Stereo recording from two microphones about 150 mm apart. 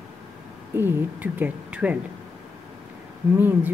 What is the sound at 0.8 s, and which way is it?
A woman's voice, 10° right (ahead or behind).